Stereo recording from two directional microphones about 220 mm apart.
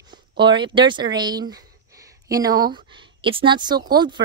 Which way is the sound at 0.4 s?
20° right (ahead or behind).